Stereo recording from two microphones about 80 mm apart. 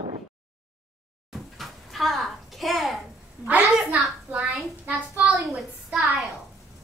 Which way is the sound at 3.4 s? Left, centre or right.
Centre.